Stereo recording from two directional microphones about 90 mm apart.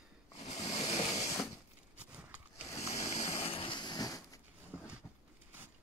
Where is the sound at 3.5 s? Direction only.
75° left (ahead or behind); by 4.4 s 45° left (ahead or behind).